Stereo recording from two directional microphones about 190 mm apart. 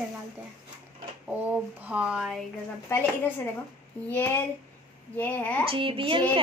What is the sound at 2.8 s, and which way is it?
A woman's voice, 10° left (ahead or behind).